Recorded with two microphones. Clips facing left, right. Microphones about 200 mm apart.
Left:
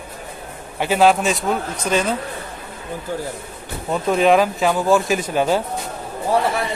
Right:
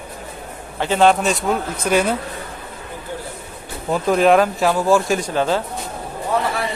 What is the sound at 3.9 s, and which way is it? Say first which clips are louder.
Speech: right 1 dB; centre (ahead or behind).